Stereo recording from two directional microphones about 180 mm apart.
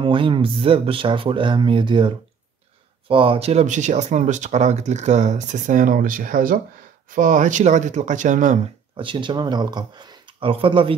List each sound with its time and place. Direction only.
0.0 s speech: 30° right (ahead or behind); by 8.5 s 45° right (ahead or behind)
8.9 s speech: 25° right (ahead or behind)